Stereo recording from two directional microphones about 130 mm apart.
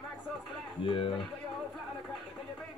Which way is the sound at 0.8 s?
40° left (ahead or behind).